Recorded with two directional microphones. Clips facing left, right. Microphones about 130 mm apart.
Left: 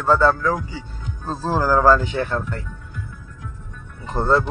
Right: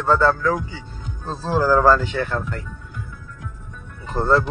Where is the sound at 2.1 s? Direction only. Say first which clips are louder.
Left 1 dB; 25° left (ahead or behind).